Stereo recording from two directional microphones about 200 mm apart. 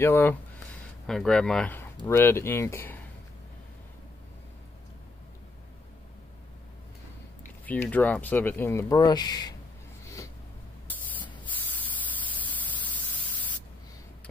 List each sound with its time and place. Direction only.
0.0 s speech: 10° left (ahead or behind)
7.6 s speech: 10° left (ahead or behind)
10.0 s a sound: 15° left (ahead or behind)
10.9 s spray: 10° left (ahead or behind)